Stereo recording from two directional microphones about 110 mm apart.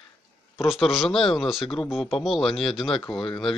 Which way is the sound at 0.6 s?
Centre (ahead or behind).